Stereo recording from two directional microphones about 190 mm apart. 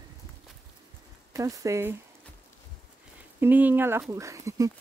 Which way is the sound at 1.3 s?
15° right (ahead or behind).